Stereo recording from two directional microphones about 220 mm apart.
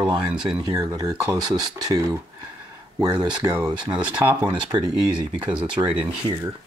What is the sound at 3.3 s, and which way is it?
Speech, 15° right (ahead or behind).